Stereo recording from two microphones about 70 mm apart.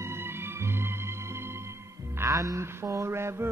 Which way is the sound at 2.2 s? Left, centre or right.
Right.